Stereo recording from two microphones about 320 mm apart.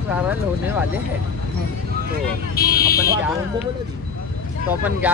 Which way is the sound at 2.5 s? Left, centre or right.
Left.